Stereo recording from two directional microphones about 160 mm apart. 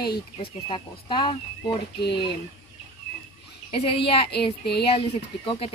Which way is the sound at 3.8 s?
35° left (ahead or behind).